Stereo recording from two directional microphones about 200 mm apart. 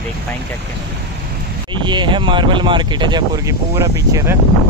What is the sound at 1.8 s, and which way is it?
Speech, 25° right (ahead or behind).